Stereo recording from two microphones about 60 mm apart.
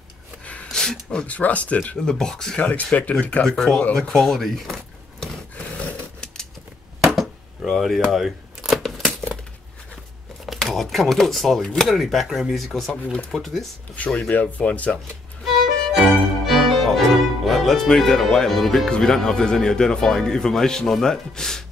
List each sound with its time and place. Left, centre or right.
0.7 s a sound: centre
1.1 s speech: left
2.0 s speech: centre
2.6 s speech: left
3.4 s speech: centre
4.1 s a sound: centre
5.6 s a sound: left
7.0 s a sound: centre
10.4 s chopping: centre
13.9 s speech: left
15.4 s music: centre
18.9 s speech: centre